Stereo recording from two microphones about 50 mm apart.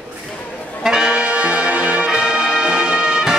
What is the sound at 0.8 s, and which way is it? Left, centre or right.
Brass instrument, centre.